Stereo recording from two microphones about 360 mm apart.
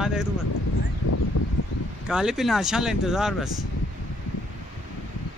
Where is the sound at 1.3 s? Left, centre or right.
Left.